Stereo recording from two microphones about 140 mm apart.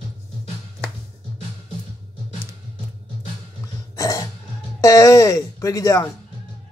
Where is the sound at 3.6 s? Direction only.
20° left (ahead or behind).